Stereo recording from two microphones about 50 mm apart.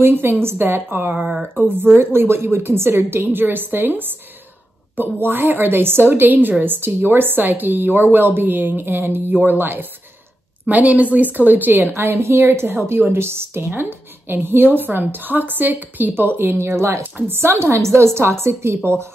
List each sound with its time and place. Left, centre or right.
0.0 s a woman's voice: right
2.1 s a woman's voice: right
11.9 s a woman's voice: right
17.3 s a woman's voice: right